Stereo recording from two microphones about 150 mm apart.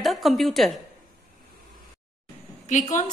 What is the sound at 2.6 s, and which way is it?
Speech, 55° left (ahead or behind).